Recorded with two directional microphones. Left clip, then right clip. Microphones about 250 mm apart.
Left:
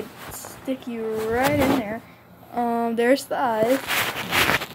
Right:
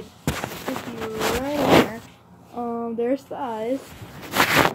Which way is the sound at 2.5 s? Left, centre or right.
Left.